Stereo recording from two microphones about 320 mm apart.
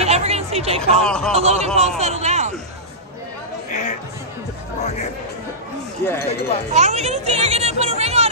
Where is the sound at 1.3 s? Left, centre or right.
Centre.